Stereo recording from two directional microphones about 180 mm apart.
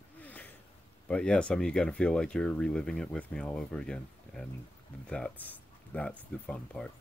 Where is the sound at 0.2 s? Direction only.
10° left (ahead or behind).